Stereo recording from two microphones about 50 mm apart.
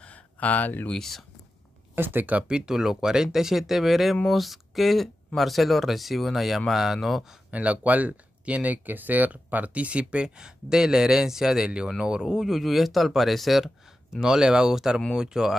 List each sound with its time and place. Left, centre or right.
0.0 s a sound: left
0.9 s speech: centre
2.0 s speech: right
2.3 s speech: centre
7.5 s speech: right
12.4 s speech: centre
14.2 s speech: centre